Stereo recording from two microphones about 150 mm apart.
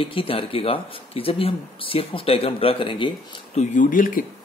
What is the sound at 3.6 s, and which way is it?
Speech, 60° left (ahead or behind).